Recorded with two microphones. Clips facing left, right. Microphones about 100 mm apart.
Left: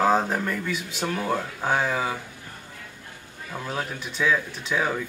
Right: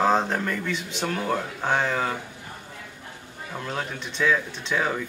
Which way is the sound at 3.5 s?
5° left (ahead or behind).